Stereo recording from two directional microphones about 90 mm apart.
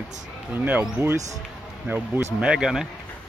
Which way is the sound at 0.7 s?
20° right (ahead or behind).